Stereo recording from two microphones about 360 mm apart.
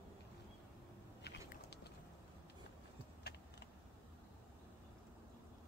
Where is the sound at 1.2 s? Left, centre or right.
Left.